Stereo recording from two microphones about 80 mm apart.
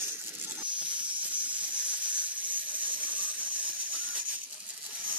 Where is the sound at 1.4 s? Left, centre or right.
Centre.